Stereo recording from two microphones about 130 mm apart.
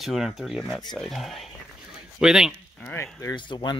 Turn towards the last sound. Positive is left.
turn(degrees=35)  # may be behind; listen again after turning